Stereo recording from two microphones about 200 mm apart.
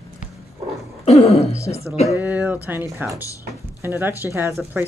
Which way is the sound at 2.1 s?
10° right (ahead or behind).